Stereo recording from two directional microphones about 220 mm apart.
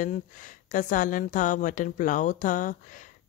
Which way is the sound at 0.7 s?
35° left (ahead or behind).